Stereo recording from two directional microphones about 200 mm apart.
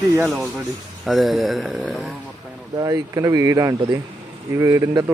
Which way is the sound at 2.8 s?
15° right (ahead or behind).